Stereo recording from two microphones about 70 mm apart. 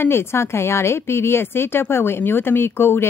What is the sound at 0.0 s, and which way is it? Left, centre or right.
Speech, left.